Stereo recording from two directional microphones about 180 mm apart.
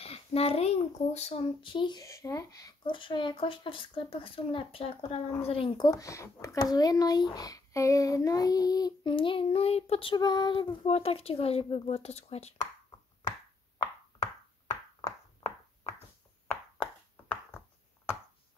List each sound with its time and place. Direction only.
0.0 s speech: 35° left (ahead or behind)
13.7 s plop: 20° left (ahead or behind)